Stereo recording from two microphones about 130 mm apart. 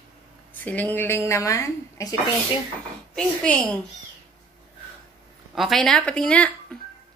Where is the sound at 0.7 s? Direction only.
15° left (ahead or behind).